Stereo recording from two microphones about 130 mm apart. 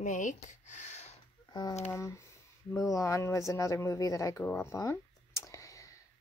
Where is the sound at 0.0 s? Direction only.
75° left (ahead or behind); by 1.1 s 60° left (ahead or behind).